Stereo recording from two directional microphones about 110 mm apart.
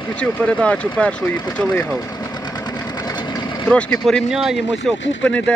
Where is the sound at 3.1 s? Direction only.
40° left (ahead or behind).